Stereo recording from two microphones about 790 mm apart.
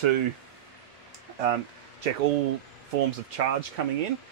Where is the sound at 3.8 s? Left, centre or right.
Right.